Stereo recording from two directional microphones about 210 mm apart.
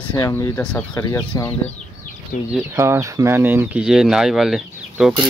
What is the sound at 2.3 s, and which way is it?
Speech, 40° left (ahead or behind).